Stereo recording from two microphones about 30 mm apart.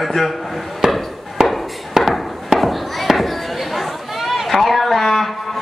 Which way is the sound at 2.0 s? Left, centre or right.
Centre.